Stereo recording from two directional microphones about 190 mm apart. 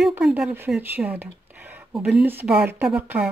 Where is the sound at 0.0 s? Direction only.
5° right (ahead or behind).